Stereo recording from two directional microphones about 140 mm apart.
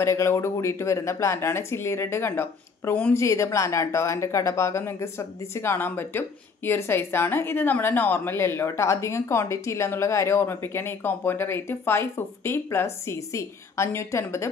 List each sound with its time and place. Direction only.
0.0 s speech: 20° left (ahead or behind)